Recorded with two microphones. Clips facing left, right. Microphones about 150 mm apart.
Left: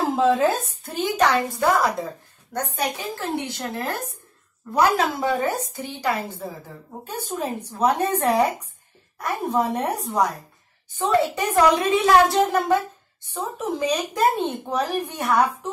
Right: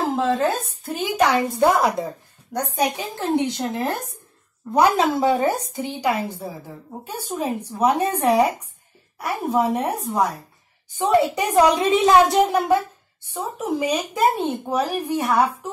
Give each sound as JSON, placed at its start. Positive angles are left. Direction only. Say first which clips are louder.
{"t": 0.3, "sound": "a woman's voice", "louder": "left 1 dB", "side_deg": 0}
{"t": 1.0, "sound": "speech", "louder": "right 1 dB", "side_deg": -10}
{"t": 1.6, "sound": "a woman's voice", "louder": "right 4 dB", "side_deg": -20}